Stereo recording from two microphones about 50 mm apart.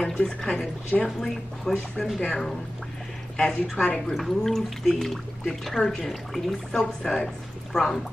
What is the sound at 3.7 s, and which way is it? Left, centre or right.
Speech, left.